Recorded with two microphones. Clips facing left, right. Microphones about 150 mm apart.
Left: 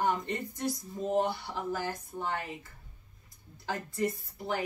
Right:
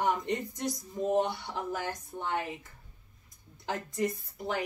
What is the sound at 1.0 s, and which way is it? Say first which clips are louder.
Speech: right 1 dB; 20° right (ahead or behind).